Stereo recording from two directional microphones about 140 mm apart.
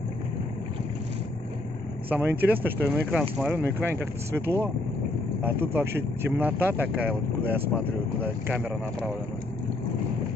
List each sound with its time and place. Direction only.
2.0 s speech: 15° right (ahead or behind)